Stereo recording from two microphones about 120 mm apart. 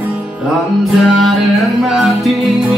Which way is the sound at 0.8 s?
Centre (ahead or behind).